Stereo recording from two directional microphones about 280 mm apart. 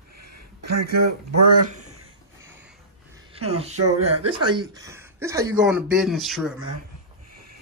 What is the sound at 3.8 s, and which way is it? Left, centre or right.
Speech, right.